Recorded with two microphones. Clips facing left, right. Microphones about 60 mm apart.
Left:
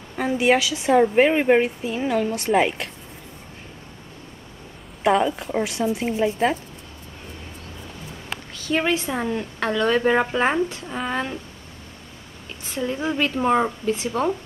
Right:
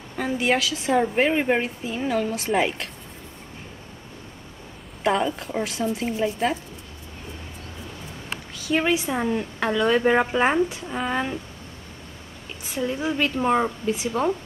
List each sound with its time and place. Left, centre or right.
0.1 s a woman's voice: centre
5.0 s a woman's voice: centre
6.0 s speech: centre
8.5 s a woman's voice: centre
12.6 s a woman's voice: centre